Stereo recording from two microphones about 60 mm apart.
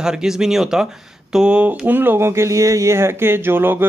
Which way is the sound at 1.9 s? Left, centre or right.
Right.